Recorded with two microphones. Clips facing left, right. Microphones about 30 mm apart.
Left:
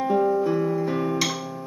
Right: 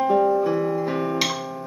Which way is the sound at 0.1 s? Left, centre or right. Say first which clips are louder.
Even; centre.